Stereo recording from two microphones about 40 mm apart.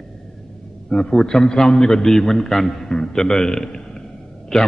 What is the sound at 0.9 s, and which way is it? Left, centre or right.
A man's voice, centre.